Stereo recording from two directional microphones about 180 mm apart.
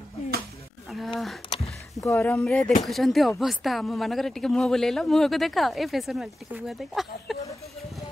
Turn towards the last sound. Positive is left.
turn(degrees=15)  # may be behind; listen again after turning